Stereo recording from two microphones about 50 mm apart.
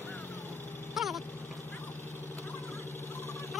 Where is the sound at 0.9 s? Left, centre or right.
Centre.